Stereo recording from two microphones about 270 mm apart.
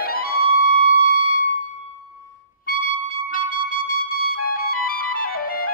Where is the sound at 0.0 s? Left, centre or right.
Left.